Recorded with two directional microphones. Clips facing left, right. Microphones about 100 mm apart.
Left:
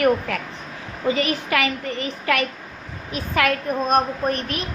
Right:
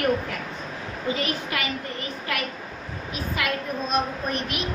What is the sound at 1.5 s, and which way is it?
Speech, 90° left.